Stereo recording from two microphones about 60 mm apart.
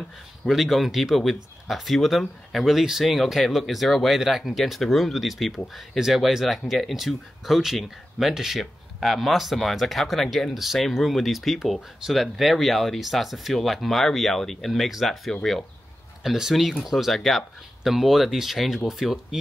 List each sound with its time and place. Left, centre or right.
0.5 s speech: centre
16.2 s speech: centre